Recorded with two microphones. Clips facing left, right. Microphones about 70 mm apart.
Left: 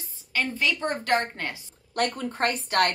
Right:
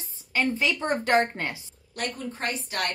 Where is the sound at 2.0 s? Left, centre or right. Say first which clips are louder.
Left 6 dB; left.